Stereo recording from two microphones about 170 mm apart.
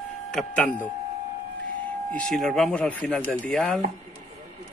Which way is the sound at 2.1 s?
5° left (ahead or behind).